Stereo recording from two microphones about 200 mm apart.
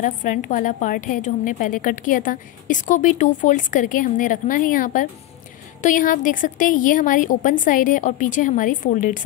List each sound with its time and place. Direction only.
0.0 s a woman's voice: 40° left (ahead or behind)